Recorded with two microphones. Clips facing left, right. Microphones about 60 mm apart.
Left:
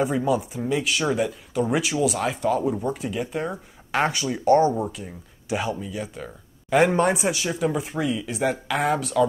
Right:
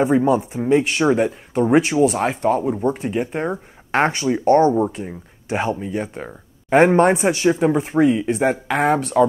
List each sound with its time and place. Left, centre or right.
0.0 s speech: right